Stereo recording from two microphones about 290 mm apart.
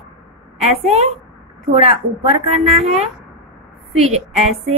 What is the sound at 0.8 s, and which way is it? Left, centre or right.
A woman's voice, right.